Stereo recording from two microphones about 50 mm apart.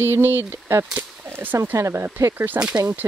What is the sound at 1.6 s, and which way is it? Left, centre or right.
Speech, right.